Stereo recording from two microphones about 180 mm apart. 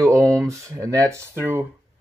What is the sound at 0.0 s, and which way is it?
Speech, 20° right (ahead or behind).